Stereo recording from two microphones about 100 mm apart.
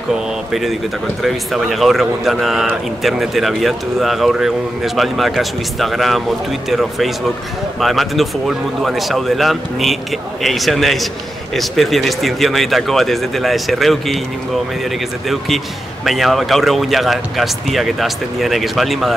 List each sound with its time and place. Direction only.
0.5 s speech: centre (ahead or behind)
15.2 s speech: centre (ahead or behind)